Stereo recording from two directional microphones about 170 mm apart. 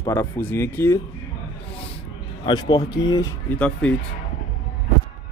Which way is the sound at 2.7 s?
20° left (ahead or behind).